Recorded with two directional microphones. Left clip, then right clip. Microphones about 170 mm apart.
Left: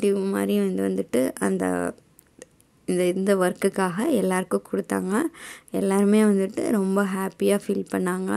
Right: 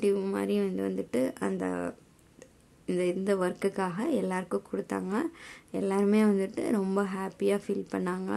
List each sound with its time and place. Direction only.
0.0 s a woman's voice: 25° left (ahead or behind)